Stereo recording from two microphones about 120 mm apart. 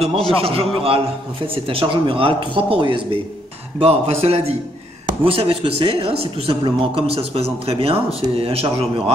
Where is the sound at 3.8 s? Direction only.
60° right (ahead or behind).